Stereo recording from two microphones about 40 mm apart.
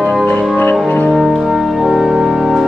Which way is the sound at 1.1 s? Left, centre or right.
Centre.